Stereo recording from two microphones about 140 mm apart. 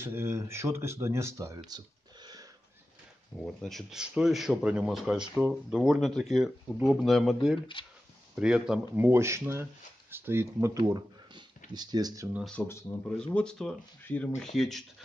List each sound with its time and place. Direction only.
0.0 s speech: 20° right (ahead or behind)
3.3 s speech: 5° left (ahead or behind)
7.8 s speech: 40° left (ahead or behind)
8.4 s speech: 5° right (ahead or behind)
8.9 s speech: 15° right (ahead or behind)
10.8 s a sound: 35° right (ahead or behind)
11.7 s speech: 30° right (ahead or behind)
12.6 s speech: 10° left (ahead or behind)